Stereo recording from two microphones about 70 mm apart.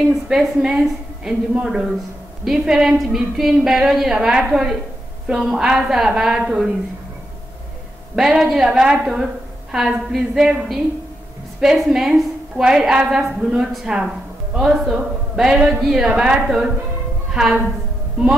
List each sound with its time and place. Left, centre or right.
0.1 s a woman's voice: centre
8.2 s a woman's voice: centre